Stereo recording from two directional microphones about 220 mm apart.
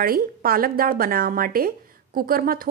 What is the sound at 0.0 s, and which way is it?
A woman's voice, 40° right (ahead or behind).